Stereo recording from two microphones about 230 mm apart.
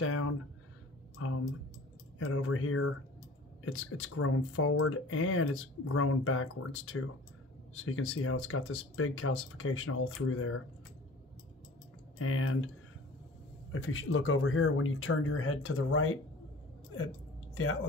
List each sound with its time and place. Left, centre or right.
0.0 s a sound: left
2.1 s speech: left
12.2 s speech: left
13.7 s speech: left